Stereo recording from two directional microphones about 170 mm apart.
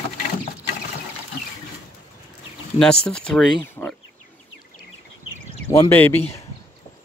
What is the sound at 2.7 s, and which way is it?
Speech, 5° left (ahead or behind).